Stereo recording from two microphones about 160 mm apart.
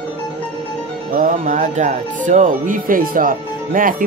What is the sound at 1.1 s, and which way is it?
Speech, 55° right (ahead or behind).